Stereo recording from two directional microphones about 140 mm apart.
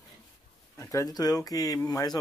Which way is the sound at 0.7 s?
20° left (ahead or behind).